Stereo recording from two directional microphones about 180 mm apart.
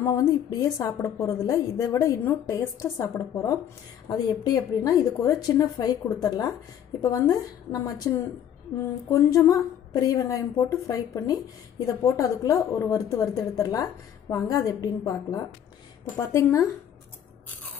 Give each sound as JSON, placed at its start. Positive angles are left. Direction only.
{"t": 0.0, "sound": "a woman's voice", "side_deg": 15}